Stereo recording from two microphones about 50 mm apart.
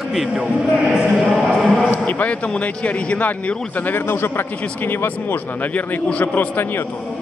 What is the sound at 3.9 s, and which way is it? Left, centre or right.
A man's voice, left.